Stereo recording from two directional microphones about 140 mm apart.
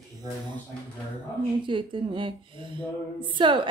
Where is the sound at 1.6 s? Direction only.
35° right (ahead or behind).